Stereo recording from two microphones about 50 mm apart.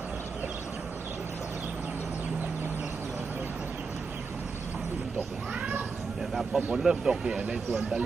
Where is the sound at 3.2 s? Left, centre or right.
Right.